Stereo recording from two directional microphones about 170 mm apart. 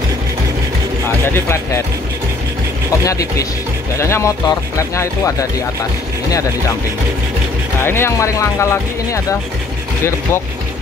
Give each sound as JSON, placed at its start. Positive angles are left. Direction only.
{"t": 1.2, "sound": "speech", "side_deg": 15}
{"t": 3.0, "sound": "speech", "side_deg": 20}
{"t": 7.8, "sound": "speech", "side_deg": 15}